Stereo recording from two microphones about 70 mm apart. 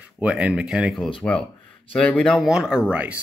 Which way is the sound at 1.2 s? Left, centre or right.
Centre.